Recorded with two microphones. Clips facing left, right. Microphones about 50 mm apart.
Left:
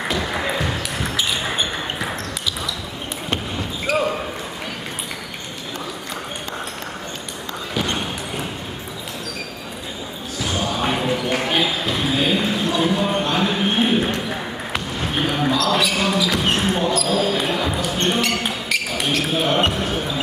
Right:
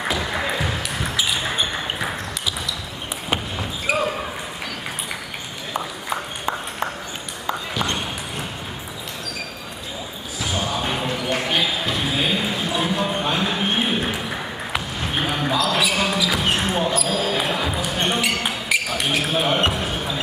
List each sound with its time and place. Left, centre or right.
0.1 s basketball bounce: centre
3.9 s basketball bounce: centre
5.7 s a sound: right
7.7 s basketball bounce: centre
10.4 s basketball bounce: centre